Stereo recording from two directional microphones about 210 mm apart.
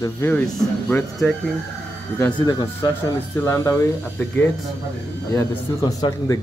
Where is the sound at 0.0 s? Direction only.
10° left (ahead or behind).